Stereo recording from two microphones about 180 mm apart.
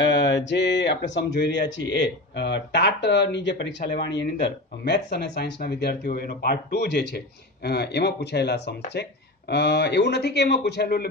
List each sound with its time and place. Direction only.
0.0 s mantra: 75° left (ahead or behind)
0.5 s speech: 75° left (ahead or behind)